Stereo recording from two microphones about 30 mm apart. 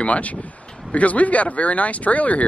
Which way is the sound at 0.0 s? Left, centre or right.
Left.